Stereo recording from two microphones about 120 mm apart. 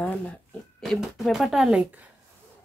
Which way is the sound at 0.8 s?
Centre (ahead or behind).